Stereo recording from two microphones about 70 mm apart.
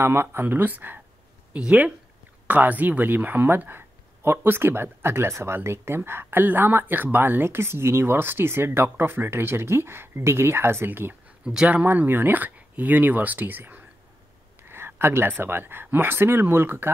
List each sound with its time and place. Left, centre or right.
0.0 s speech: right
11.4 s speech: centre; by 16.9 s right